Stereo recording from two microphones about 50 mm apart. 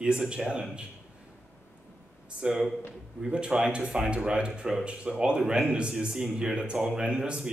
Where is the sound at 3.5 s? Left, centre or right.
Centre.